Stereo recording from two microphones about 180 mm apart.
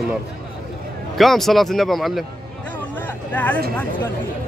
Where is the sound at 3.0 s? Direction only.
10° left (ahead or behind).